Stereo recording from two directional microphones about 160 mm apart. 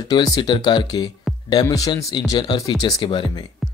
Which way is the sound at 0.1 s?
25° left (ahead or behind).